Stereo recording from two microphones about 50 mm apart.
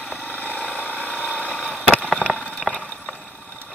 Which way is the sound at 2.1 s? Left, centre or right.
Centre.